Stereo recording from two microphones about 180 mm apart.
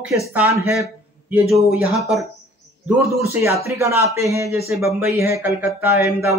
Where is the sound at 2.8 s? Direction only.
15° right (ahead or behind).